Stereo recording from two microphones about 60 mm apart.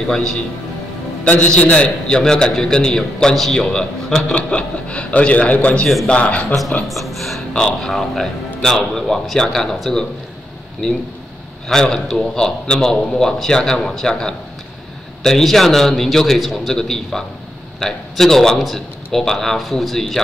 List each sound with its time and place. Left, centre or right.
0.1 s a man's voice: centre
1.5 s a man's voice: centre
6.9 s a man's voice: centre
11.7 s a man's voice: centre